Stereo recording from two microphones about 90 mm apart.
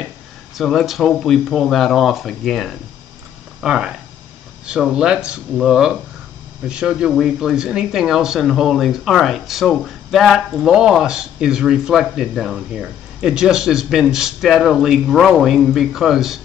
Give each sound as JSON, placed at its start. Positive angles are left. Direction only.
{"t": 0.6, "sound": "speech", "side_deg": 0}